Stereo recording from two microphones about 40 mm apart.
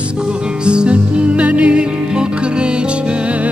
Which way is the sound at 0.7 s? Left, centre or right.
Right.